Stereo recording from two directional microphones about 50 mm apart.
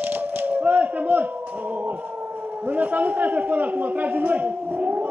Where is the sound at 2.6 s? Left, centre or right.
Right.